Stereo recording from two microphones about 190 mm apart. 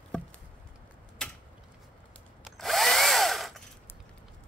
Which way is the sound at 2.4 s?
Centre (ahead or behind).